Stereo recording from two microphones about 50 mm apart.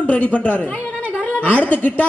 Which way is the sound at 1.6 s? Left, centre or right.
Left.